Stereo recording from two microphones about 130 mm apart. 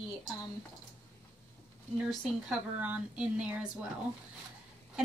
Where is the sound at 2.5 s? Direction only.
10° right (ahead or behind).